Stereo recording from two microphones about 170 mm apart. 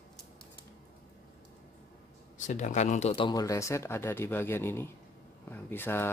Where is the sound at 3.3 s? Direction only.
20° left (ahead or behind).